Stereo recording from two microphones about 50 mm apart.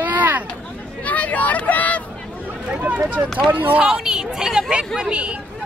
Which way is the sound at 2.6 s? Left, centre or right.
Right.